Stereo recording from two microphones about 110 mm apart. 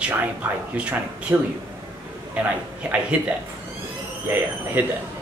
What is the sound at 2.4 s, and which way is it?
Speech, 15° right (ahead or behind).